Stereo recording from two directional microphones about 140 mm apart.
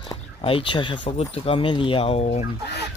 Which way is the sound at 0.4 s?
40° left (ahead or behind).